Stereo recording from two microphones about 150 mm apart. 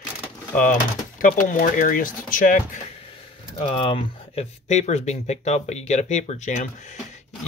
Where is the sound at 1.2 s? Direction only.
65° left (ahead or behind).